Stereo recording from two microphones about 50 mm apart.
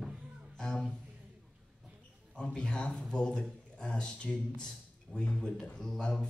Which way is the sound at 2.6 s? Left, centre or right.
Centre.